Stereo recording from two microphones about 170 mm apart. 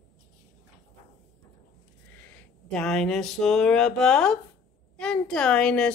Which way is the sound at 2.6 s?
5° left (ahead or behind).